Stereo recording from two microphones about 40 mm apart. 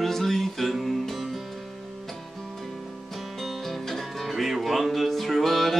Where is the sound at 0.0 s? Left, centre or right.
Centre.